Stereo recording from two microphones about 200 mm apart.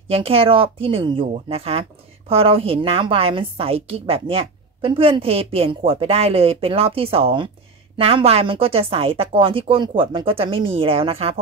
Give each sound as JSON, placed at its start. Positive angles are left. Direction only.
{"t": 0.1, "sound": "a woman's voice", "side_deg": -30}